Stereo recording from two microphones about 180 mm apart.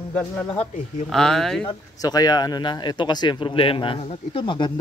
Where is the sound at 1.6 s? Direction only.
25° left (ahead or behind).